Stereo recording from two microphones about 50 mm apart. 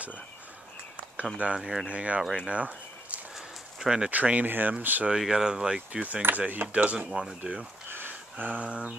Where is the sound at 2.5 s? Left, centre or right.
Right.